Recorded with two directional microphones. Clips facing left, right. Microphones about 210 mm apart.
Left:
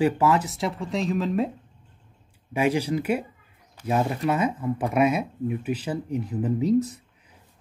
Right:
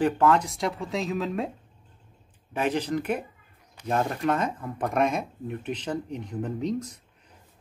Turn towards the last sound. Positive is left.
turn(degrees=5)  # may be behind; listen again after turning